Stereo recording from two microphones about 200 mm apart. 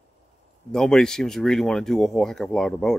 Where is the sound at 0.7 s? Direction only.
Centre (ahead or behind).